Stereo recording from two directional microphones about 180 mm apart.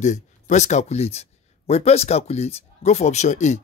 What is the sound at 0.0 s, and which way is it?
Speech, 40° left (ahead or behind).